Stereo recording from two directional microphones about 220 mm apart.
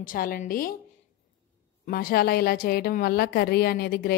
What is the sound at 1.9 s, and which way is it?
A woman's voice, 40° left (ahead or behind).